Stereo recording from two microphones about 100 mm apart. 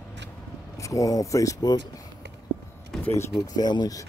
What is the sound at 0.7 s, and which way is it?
Speech, 35° left (ahead or behind).